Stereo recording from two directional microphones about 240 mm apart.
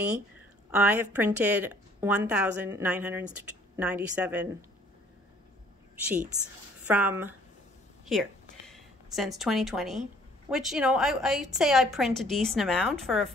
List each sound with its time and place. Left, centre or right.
0.7 s a woman's voice: centre
6.9 s a woman's voice: centre
8.0 s a sound: centre
10.5 s a woman's voice: centre